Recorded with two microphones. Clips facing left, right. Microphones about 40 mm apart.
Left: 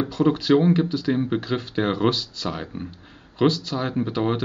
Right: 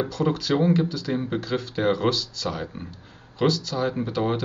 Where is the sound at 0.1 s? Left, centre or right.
Left.